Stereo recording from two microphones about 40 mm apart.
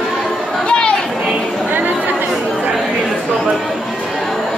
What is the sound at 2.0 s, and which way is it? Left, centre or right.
Chatter, right.